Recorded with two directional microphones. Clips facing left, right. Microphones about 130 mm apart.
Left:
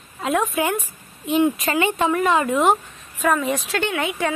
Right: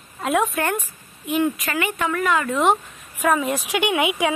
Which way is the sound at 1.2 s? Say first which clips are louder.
Left 3 dB; 25° left (ahead or behind).